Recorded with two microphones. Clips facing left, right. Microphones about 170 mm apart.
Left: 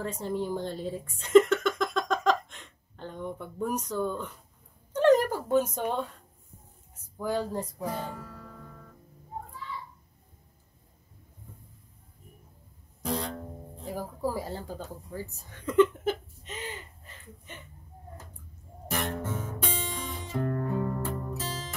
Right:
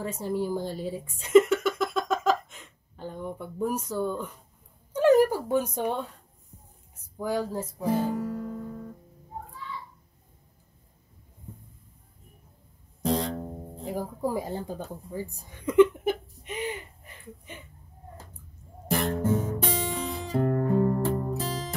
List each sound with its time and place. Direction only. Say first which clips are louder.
0.0 s speech: right 2 dB; 10° right (ahead or behind)
4.9 s a sound: right 2 dB; 10° right (ahead or behind)
7.2 s speech: right 1 dB; 10° right (ahead or behind)
8.2 s music: right 13 dB; 20° right (ahead or behind)
13.0 s music: right 5 dB; 30° right (ahead or behind)
13.8 s speech: right 2 dB; 20° right (ahead or behind)
19.0 s music: right 8 dB; 35° right (ahead or behind)